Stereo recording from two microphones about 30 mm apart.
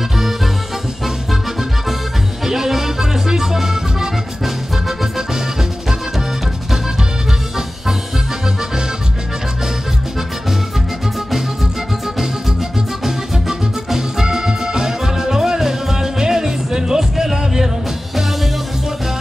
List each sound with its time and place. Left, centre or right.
2.4 s music: centre
13.0 s music: centre